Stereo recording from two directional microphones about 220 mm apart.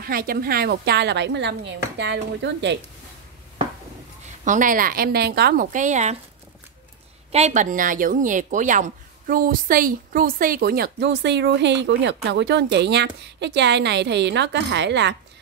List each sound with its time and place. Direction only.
0.0 s a woman's voice: 40° right (ahead or behind)
4.5 s speech: 35° right (ahead or behind)
7.3 s a woman's voice: 30° right (ahead or behind); by 15.1 s 50° right (ahead or behind)